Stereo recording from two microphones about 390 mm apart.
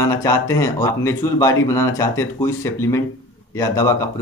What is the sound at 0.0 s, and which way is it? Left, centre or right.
Speech, centre.